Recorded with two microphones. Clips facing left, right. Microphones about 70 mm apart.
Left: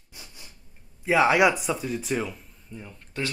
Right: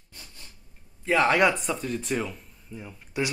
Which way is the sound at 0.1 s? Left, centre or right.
Centre.